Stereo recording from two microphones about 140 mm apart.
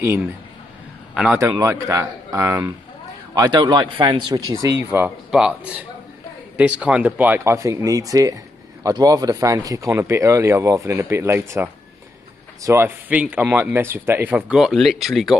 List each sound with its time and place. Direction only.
0.0 s speech: 15° right (ahead or behind)
1.1 s a man's voice: 5° right (ahead or behind)
1.4 s speech: 20° right (ahead or behind)
3.3 s speech: 30° right (ahead or behind)
4.9 s speech: 10° right (ahead or behind)